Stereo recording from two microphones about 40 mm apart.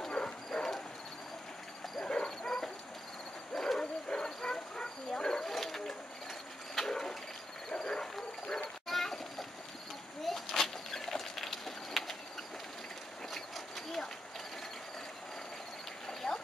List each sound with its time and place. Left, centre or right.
0.1 s dog: centre
2.0 s dog: left
2.4 s dog: centre
3.5 s bow-wow: centre
4.1 s bow-wow: centre
5.4 s dog: centre
6.7 s a sound: centre
13.3 s a sound: centre
16.1 s a sound: centre